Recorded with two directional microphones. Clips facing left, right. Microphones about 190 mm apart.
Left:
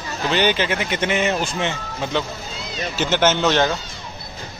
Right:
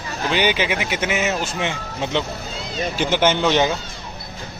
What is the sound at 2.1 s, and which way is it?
Speech, 20° right (ahead or behind).